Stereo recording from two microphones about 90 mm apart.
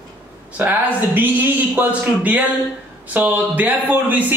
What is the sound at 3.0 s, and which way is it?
A man's voice, 20° right (ahead or behind).